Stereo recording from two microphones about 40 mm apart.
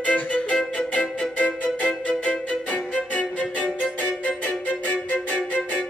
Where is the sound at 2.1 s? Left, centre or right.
Left.